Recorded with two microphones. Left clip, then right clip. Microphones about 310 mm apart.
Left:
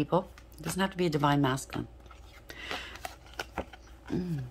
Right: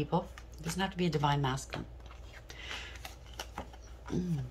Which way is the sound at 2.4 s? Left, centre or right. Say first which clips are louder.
Left 5 dB; centre.